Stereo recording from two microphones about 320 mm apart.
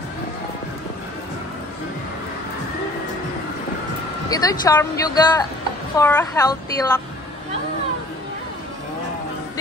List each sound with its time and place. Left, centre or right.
4.3 s speech: centre